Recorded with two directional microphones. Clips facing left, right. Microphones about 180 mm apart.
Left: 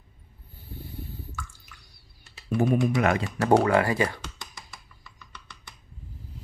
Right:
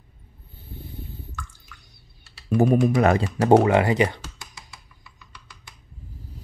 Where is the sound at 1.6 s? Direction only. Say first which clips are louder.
Right 3 dB; 20° right (ahead or behind).